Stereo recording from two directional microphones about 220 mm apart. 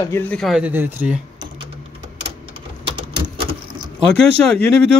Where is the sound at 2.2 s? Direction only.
25° right (ahead or behind).